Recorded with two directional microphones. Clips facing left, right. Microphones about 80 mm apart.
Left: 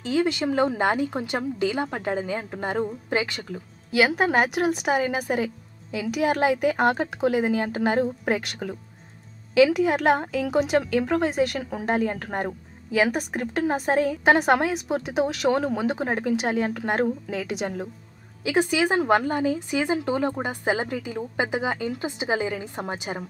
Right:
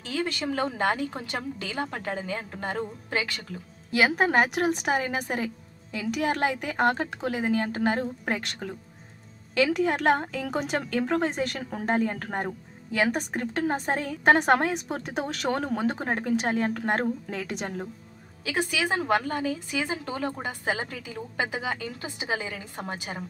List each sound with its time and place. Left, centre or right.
0.0 s a woman's voice: left
3.9 s a woman's voice: centre
18.4 s a woman's voice: left